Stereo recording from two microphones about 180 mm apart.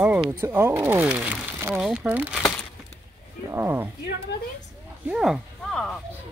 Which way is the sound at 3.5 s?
10° right (ahead or behind).